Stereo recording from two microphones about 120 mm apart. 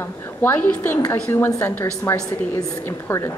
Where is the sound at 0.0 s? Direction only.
15° left (ahead or behind).